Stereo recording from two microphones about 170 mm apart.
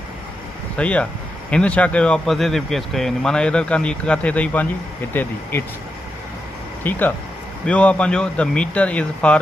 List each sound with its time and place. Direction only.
0.7 s speech: 10° left (ahead or behind)
6.8 s speech: 10° left (ahead or behind)